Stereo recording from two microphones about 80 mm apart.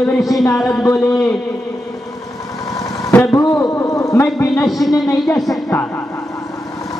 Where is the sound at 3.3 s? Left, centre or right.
Left.